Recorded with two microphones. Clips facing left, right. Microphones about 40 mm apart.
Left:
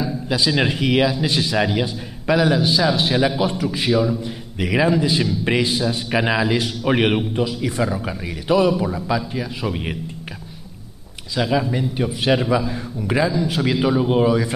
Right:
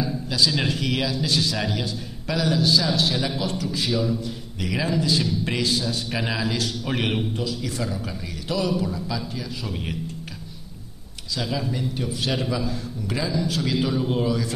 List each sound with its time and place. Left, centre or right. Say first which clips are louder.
0.3 s a man's voice: left 4 dB; left
11.3 s a man's voice: left 7 dB; left